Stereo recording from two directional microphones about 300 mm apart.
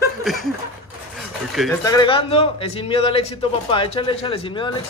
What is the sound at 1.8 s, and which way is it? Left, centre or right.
A man's voice, centre.